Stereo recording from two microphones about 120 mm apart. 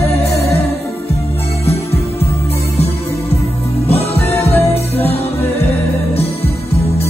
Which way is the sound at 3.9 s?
55° left (ahead or behind).